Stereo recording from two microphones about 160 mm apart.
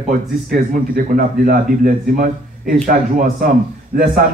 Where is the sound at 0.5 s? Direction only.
60° right (ahead or behind).